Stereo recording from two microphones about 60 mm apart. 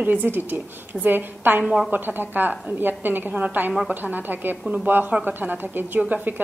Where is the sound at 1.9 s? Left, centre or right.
Right.